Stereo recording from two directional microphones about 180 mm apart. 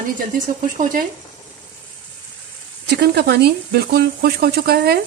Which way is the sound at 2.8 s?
65° right (ahead or behind).